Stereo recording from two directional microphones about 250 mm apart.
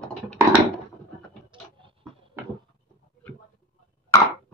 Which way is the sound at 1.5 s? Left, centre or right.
Centre.